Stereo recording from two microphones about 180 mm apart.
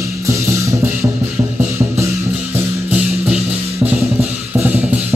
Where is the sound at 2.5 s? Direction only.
10° right (ahead or behind).